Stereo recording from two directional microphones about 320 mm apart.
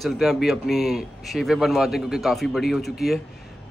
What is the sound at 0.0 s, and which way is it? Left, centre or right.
A man's voice, centre.